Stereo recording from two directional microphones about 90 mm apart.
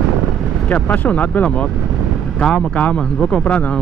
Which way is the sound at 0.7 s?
20° left (ahead or behind).